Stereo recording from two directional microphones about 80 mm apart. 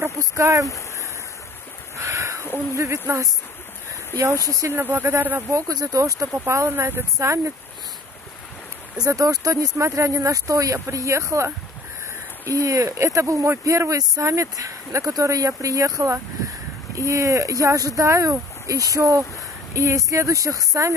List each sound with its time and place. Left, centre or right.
0.0 s speech: right
0.7 s a sound: left
2.0 s a sound: right
2.7 s speech: right
4.5 s speech: right
4.7 s speech: right
5.5 s speech: right
9.0 s speech: right